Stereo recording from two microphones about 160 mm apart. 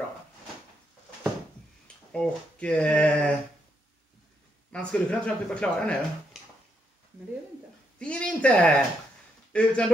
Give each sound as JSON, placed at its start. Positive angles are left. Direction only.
{"t": 2.1, "sound": "speech", "side_deg": 5}
{"t": 4.7, "sound": "speech", "side_deg": 5}
{"t": 8.0, "sound": "speech", "side_deg": 5}